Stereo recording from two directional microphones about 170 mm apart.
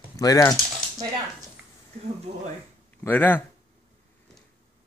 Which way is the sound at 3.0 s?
10° left (ahead or behind).